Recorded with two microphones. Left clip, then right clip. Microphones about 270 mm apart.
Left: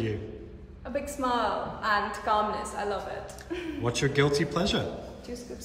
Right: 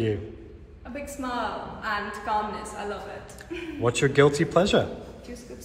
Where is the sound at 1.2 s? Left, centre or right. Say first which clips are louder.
Left 3 dB; centre.